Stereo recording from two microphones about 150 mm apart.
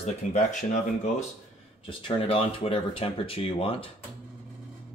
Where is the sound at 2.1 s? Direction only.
40° left (ahead or behind).